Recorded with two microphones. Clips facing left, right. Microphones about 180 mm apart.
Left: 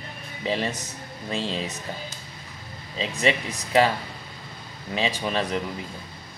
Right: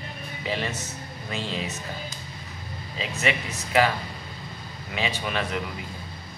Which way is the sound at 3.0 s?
30° left (ahead or behind).